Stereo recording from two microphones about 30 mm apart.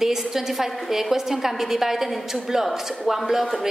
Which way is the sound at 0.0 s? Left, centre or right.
Centre.